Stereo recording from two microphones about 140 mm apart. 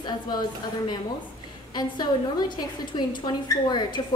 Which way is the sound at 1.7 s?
30° left (ahead or behind).